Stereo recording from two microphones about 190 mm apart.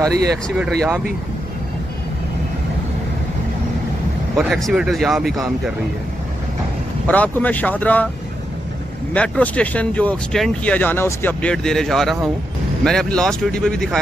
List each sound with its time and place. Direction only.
0.6 s speech: centre (ahead or behind)
4.4 s speech: centre (ahead or behind)
7.1 s speech: 10° left (ahead or behind)
9.1 s speech: 5° left (ahead or behind)